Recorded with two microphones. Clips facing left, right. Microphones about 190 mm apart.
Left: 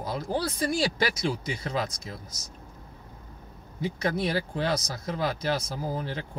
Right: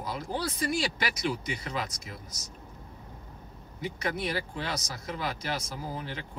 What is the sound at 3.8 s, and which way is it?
Speech, 35° left (ahead or behind).